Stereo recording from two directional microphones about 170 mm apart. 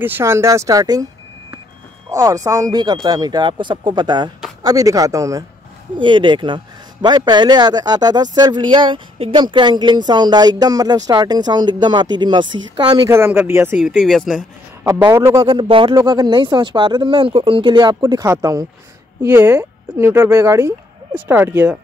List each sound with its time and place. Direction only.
0.0 s speech: 15° right (ahead or behind)
2.0 s speech: 20° right (ahead or behind)
13.7 s speech: centre (ahead or behind)
14.8 s speech: 15° right (ahead or behind)